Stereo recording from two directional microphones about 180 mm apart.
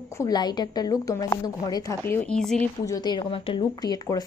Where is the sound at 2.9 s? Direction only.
25° left (ahead or behind).